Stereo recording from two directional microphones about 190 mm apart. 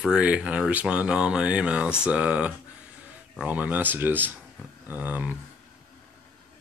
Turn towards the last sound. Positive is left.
turn(degrees=-10)  # may be behind; listen again after turning